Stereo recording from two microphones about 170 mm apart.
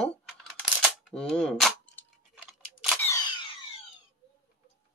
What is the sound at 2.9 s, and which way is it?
Single-lens reflex camera, 15° left (ahead or behind).